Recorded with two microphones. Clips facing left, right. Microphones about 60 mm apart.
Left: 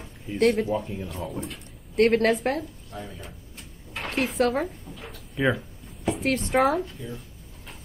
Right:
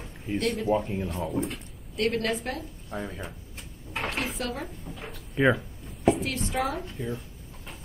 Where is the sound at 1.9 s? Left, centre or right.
Left.